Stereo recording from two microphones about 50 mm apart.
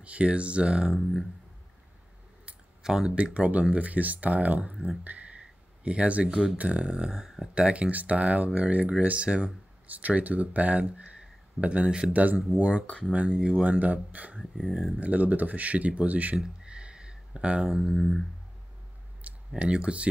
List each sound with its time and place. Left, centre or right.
0.0 s speech: right
2.8 s speech: centre
3.3 s speech: right
5.4 s a sound: right
6.3 s speech: centre
6.6 s speech: right; by 7.4 s centre
7.5 s speech: right
12.8 s speech: left
13.1 s speech: right
16.6 s a sound: centre
17.6 s speech: centre
17.9 s a sound: centre
19.5 s speech: centre